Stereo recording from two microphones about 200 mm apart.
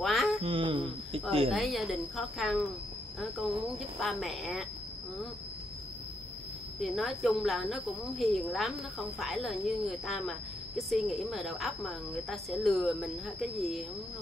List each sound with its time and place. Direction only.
0.0 s a sound: centre (ahead or behind)
0.4 s speech: 25° right (ahead or behind)
1.5 s speech: centre (ahead or behind)
3.6 s speech: centre (ahead or behind)
6.8 s speech: centre (ahead or behind)